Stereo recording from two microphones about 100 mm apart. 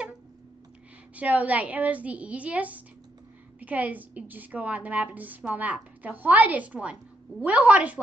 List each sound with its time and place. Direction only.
1.1 s a woman's voice: 15° right (ahead or behind)